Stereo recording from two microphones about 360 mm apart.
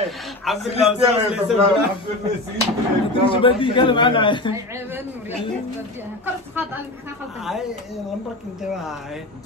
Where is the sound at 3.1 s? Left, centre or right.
Centre.